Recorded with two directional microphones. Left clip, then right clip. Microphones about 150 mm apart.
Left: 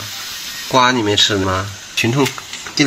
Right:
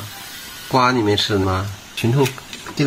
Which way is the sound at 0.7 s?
Centre (ahead or behind).